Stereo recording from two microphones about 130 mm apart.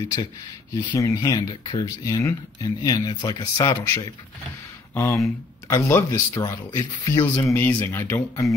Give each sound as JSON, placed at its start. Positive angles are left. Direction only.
{"t": 0.0, "sound": "speech", "side_deg": 30}
{"t": 3.7, "sound": "speech", "side_deg": 20}